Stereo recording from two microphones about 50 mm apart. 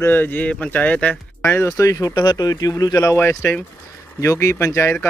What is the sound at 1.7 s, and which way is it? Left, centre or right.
Speech, left.